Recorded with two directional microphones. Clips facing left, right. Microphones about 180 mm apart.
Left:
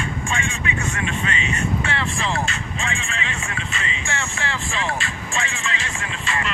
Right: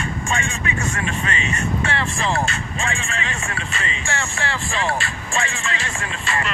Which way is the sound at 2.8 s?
45° right (ahead or behind).